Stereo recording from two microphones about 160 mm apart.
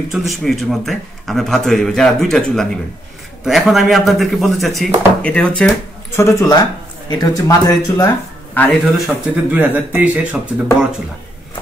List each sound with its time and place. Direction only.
0.1 s a man's voice: centre (ahead or behind)
6.1 s speech: 15° left (ahead or behind)
8.9 s speech: 5° right (ahead or behind)